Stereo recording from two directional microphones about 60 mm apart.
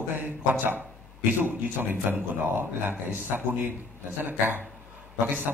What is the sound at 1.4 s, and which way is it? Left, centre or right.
Speech, right.